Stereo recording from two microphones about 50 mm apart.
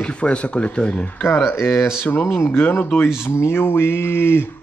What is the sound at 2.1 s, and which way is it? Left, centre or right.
Speech, left.